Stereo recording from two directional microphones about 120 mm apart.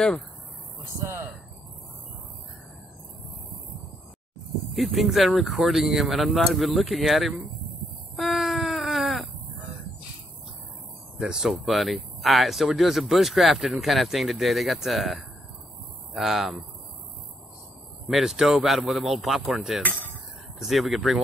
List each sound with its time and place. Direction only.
1.0 s speech: 20° right (ahead or behind)
4.7 s speech: centre (ahead or behind)
8.2 s baby cry: centre (ahead or behind)
11.1 s speech: 5° right (ahead or behind)
18.0 s speech: 5° right (ahead or behind)
19.8 s a sound: 15° left (ahead or behind)
20.5 s speech: centre (ahead or behind)